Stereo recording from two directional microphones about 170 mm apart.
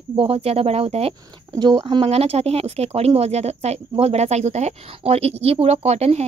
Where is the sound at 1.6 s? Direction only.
25° right (ahead or behind).